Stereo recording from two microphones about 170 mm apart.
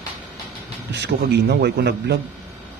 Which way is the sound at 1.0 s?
75° right (ahead or behind).